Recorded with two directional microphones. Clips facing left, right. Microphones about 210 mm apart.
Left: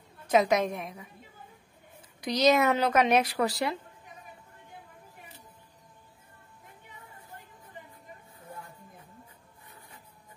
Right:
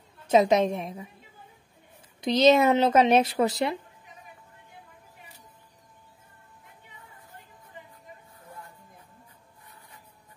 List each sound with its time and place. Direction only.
0.3 s speech: 25° right (ahead or behind)
2.2 s speech: 25° right (ahead or behind)